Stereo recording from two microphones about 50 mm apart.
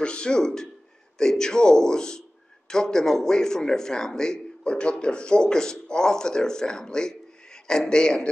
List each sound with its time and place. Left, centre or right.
0.0 s speech: centre